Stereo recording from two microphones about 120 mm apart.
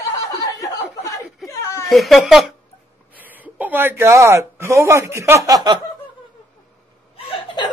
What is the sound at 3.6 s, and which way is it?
Speech, 15° right (ahead or behind).